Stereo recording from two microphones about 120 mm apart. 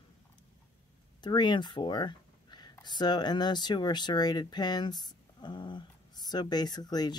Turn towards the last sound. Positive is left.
turn(degrees=35)  # may be behind; listen again after turning